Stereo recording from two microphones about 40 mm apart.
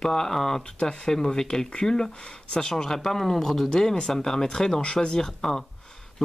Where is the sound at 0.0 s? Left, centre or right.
Centre.